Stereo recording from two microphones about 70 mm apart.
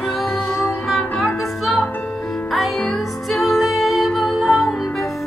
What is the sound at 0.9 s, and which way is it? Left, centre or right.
Music, centre.